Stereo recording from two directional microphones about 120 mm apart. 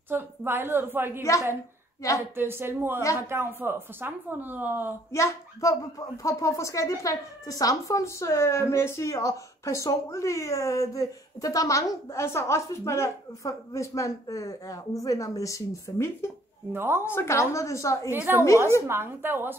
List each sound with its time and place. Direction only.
0.1 s a woman's voice: 20° right (ahead or behind)
2.3 s a woman's voice: 20° right (ahead or behind)
5.1 s speech: 25° left (ahead or behind)
16.7 s a woman's voice: 20° right (ahead or behind)
17.0 s speech: 20° left (ahead or behind)
18.1 s a woman's voice: 15° right (ahead or behind)
18.4 s speech: 25° left (ahead or behind)
18.9 s a woman's voice: 20° right (ahead or behind)